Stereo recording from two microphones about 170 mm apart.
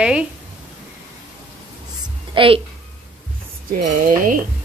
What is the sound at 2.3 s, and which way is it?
Speech, 30° right (ahead or behind).